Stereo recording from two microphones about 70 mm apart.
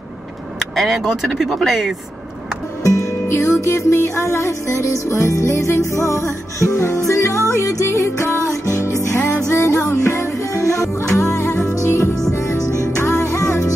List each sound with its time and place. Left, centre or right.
0.7 s speech: centre
2.8 s music: left